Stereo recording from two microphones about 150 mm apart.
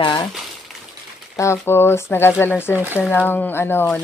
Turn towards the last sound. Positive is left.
turn(degrees=15)  # may be behind; listen again after turning